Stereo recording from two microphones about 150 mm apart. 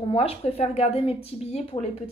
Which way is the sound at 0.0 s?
40° left (ahead or behind).